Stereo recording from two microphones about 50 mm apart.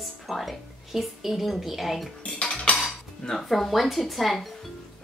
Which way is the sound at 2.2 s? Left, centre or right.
Centre.